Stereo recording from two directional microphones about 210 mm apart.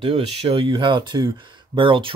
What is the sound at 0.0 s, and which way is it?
Speech, 30° right (ahead or behind).